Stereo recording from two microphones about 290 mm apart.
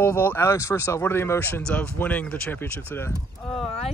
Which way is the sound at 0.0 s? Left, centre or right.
Centre.